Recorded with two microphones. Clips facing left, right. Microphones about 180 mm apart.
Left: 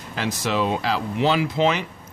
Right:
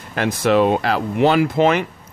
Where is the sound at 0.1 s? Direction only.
55° right (ahead or behind).